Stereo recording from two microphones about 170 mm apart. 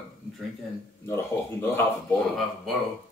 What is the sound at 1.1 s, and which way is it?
Speech, 15° left (ahead or behind).